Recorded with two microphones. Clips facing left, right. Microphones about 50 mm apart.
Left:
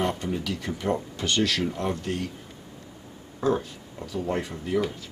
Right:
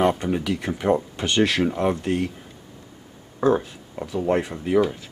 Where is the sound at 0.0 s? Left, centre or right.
Centre.